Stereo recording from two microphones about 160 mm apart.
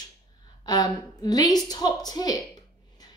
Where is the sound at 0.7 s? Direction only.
25° left (ahead or behind).